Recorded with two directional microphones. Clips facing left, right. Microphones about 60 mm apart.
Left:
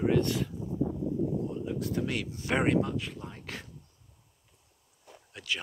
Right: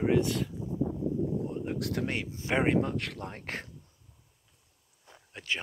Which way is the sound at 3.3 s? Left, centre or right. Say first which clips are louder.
Right 3 dB; right.